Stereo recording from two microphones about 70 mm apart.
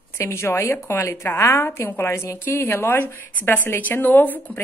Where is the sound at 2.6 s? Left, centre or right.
Left.